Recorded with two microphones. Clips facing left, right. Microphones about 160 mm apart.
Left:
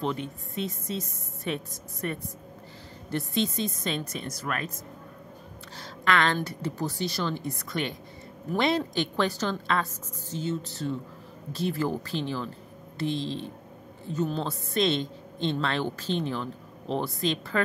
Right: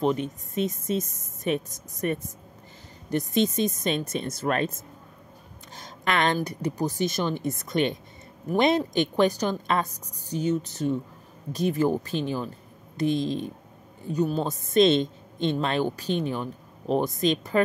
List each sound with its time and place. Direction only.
0.0 s a woman's voice: 15° right (ahead or behind)